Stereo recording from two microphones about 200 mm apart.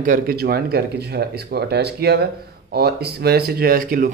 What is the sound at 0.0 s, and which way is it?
Speech, 45° right (ahead or behind).